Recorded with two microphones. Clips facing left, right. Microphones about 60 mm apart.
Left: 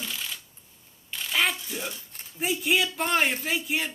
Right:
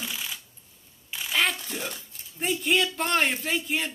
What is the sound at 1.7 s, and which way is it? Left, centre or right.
Speech, right.